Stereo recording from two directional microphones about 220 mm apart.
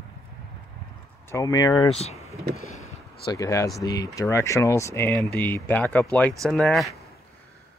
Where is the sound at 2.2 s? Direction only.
15° right (ahead or behind).